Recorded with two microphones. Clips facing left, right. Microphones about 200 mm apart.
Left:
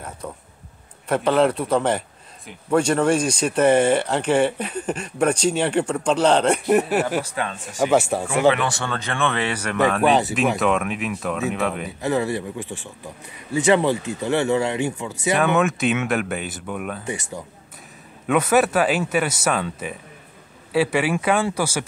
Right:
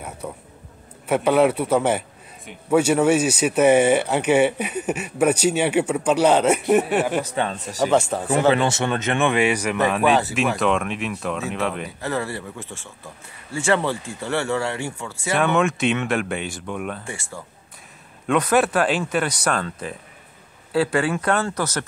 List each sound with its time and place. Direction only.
0.2 s a man's voice: 10° right (ahead or behind)
7.2 s speech: 25° right (ahead or behind)
7.8 s speech: 10° left (ahead or behind)
8.5 s speech: 25° right (ahead or behind); by 11.9 s centre (ahead or behind)
12.0 s speech: 15° left (ahead or behind)
15.3 s speech: centre (ahead or behind)
17.0 s speech: 20° left (ahead or behind)
18.2 s speech: 5° left (ahead or behind)